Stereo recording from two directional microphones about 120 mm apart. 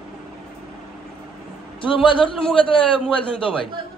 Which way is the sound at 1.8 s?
45° left (ahead or behind).